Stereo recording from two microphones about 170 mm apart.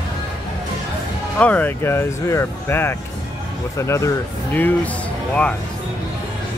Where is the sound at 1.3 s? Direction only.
10° left (ahead or behind).